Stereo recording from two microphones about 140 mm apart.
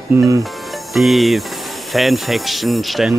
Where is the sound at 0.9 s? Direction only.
Centre (ahead or behind).